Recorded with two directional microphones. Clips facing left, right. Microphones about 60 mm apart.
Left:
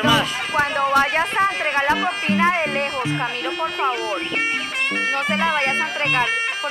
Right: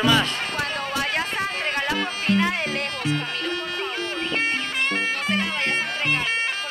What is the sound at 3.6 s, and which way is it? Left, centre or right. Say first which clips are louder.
Speech: left 8 dB; centre.